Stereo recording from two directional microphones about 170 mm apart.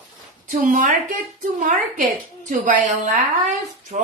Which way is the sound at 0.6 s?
55° right (ahead or behind).